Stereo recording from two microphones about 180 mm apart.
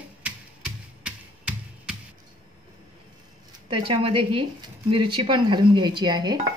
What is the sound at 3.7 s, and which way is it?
Speech, 30° right (ahead or behind).